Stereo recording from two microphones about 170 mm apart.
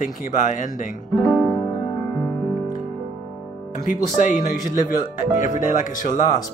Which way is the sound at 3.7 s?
50° left (ahead or behind).